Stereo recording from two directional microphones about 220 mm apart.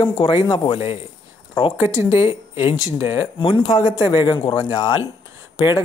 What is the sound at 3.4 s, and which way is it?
A woman's voice, 25° left (ahead or behind).